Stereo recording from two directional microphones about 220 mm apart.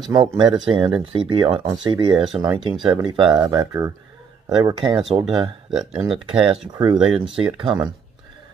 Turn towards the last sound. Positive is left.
turn(degrees=-20)  # may be behind; listen again after turning